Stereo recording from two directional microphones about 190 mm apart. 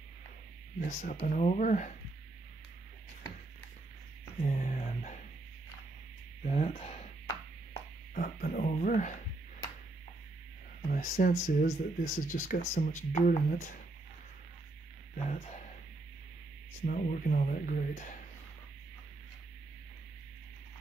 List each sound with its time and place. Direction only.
0.7 s speech: 45° left (ahead or behind)
4.5 s a sound: 40° left (ahead or behind)
6.4 s speech: 35° left (ahead or behind)
8.1 s music: 45° left (ahead or behind)
10.9 s speech: 45° left (ahead or behind)
15.1 s speech: 35° left (ahead or behind)
16.8 s speech: 45° left (ahead or behind)